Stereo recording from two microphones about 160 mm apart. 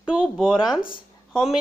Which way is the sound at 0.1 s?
5° right (ahead or behind).